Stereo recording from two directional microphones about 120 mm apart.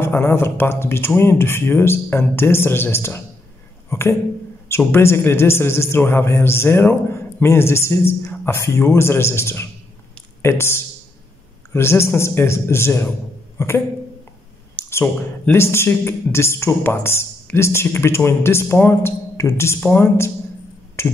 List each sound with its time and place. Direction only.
0.0 s a man's voice: 20° left (ahead or behind)
15.4 s a man's voice: 20° left (ahead or behind)